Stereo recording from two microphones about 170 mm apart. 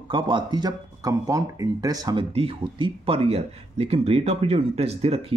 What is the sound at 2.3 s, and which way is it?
Speech, 35° right (ahead or behind).